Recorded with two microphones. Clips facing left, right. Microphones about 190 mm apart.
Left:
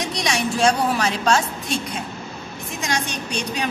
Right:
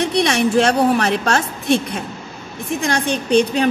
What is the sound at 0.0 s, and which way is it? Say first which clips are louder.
A woman's voice: right 7 dB; 60° right (ahead or behind).